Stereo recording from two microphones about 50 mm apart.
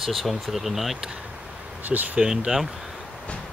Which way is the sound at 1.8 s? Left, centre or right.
Right.